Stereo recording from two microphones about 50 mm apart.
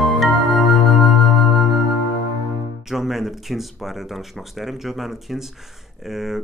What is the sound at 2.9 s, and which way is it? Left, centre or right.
Speech, centre.